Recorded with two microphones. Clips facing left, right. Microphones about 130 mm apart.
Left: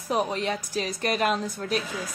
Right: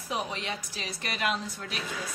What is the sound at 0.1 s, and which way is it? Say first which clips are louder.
A woman's voice: left 7 dB; 45° left (ahead or behind).